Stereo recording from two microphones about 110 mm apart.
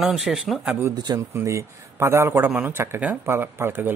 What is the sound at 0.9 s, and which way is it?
Speech, 40° right (ahead or behind).